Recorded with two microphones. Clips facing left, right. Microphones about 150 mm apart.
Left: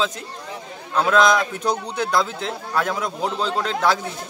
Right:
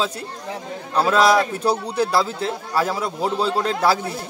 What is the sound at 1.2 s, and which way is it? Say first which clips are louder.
Speech: right 2 dB; 35° right (ahead or behind).